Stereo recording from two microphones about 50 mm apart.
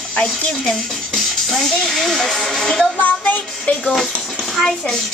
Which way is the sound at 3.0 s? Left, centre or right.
Left.